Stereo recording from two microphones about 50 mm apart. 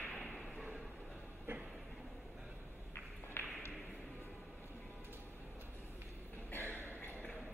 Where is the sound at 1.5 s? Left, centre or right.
Right.